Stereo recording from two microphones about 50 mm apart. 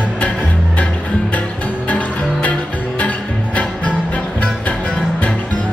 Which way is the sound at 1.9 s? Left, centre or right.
Left.